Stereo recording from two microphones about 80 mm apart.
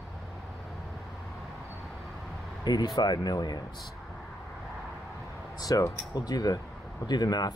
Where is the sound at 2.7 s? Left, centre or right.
Left.